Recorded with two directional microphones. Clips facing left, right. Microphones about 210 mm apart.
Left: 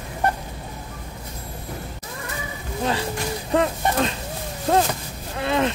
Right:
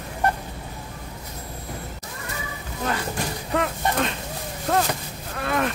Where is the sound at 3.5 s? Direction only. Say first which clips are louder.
Left 3 dB; 30° left (ahead or behind).